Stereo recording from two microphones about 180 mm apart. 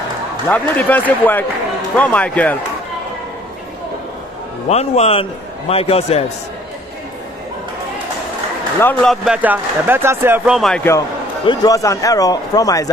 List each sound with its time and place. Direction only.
0.5 s speech: 10° left (ahead or behind)
4.6 s a man's voice: 35° left (ahead or behind)
8.7 s speech: 5° left (ahead or behind)
11.4 s a man's voice: 20° left (ahead or behind)